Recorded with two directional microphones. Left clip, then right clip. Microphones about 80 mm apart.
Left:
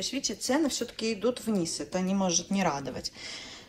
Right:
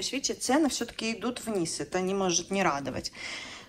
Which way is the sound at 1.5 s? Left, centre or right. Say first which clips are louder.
Right 1 dB; left.